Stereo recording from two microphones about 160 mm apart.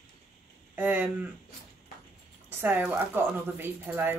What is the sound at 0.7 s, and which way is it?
Speech, 10° right (ahead or behind).